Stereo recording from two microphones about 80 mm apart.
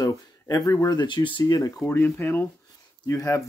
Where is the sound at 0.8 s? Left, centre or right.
Left.